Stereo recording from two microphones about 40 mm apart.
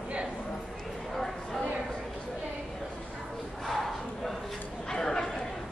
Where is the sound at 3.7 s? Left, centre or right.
Centre.